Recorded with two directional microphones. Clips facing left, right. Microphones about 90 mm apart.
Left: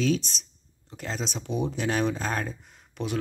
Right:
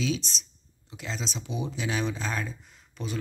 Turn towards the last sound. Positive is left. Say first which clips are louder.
# left 4 dB
turn(degrees=65)  # may be behind; listen again after turning